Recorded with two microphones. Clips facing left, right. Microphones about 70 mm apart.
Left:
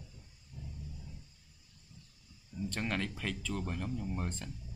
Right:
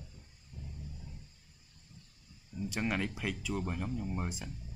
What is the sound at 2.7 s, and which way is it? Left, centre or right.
Speech, centre.